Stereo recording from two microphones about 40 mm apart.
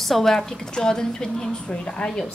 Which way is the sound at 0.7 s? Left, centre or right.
Centre.